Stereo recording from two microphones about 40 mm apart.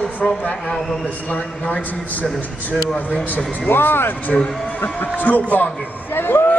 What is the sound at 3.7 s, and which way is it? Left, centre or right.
Speech, left.